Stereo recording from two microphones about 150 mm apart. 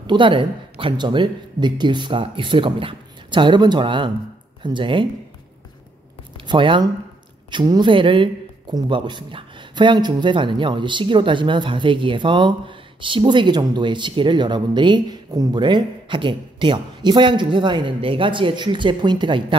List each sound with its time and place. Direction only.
0.0 s a man's voice: 30° right (ahead or behind)
6.4 s a man's voice: 30° right (ahead or behind)